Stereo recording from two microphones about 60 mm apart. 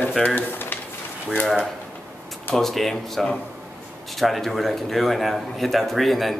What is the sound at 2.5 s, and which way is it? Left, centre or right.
A man's voice, centre.